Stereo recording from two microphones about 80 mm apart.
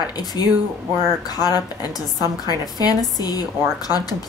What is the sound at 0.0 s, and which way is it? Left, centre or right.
A woman's voice, left.